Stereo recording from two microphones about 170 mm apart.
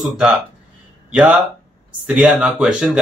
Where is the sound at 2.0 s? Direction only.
5° right (ahead or behind).